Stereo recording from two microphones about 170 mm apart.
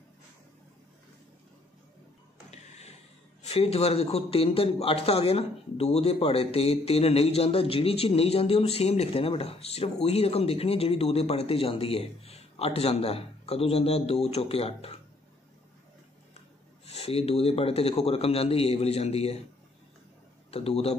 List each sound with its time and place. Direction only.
3.4 s a man's voice: 35° left (ahead or behind)
16.8 s a man's voice: 35° left (ahead or behind)
20.5 s a man's voice: 35° left (ahead or behind)